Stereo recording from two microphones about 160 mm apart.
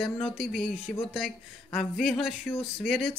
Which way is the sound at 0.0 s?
Centre (ahead or behind).